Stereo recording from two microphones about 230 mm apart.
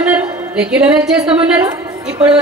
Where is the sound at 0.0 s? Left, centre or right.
Centre.